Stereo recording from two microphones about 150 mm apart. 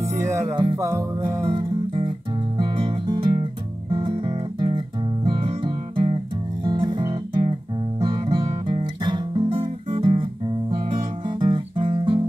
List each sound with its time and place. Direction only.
0.0 s music: 20° right (ahead or behind)
1.5 s music: 35° right (ahead or behind)
9.9 s guitar: 35° right (ahead or behind)
10.7 s music: 35° right (ahead or behind)